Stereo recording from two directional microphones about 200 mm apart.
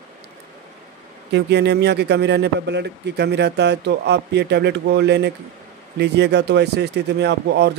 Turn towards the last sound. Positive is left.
turn(degrees=-55)  # may be behind; listen again after turning